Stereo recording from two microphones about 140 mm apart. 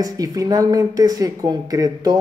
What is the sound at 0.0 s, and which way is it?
Speech, 25° right (ahead or behind).